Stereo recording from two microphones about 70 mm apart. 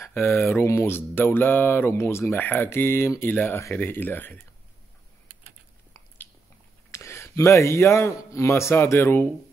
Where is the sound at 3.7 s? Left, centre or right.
Left.